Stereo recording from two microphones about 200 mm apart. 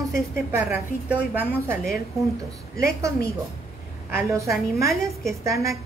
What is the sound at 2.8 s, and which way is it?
A woman's voice, 15° right (ahead or behind).